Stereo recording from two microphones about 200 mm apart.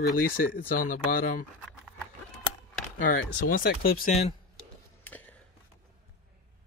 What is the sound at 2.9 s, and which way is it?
Speech, 45° left (ahead or behind).